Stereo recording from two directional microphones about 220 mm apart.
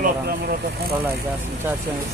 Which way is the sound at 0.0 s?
45° right (ahead or behind).